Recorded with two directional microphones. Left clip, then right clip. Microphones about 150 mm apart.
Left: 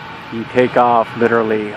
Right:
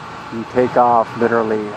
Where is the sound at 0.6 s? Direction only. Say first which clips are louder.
Left 1 dB; 20° left (ahead or behind).